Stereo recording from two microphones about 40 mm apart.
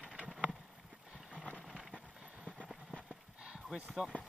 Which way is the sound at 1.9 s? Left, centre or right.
Right.